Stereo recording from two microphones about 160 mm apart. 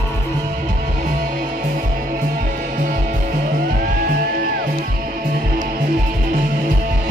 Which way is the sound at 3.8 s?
60° right (ahead or behind).